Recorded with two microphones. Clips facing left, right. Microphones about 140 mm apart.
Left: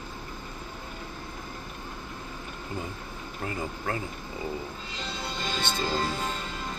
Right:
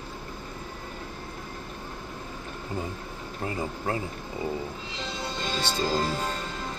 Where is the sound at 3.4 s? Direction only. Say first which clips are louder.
Right 2 dB; 25° right (ahead or behind).